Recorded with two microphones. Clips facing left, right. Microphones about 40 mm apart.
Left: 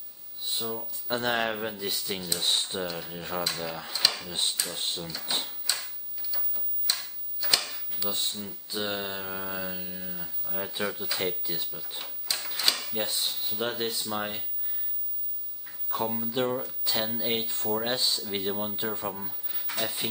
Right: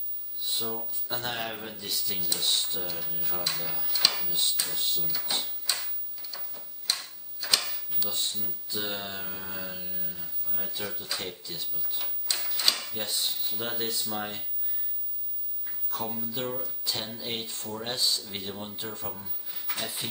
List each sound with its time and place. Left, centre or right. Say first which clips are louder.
0.6 s speech: left 2 dB; centre
1.0 s speech: left 7 dB; left
3.9 s drawer open or close: right 1 dB; centre
4.3 s speech: left 1 dB; left
6.3 s a sound: even; centre
8.0 s speech: left 2 dB; centre
12.0 s drawer open or close: even; centre
12.9 s speech: left 2 dB; centre
15.9 s speech: left 5 dB; centre